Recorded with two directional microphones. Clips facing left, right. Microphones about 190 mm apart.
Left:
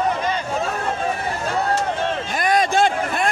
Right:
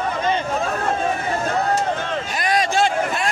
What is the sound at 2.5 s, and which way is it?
Vehicle, 50° left (ahead or behind).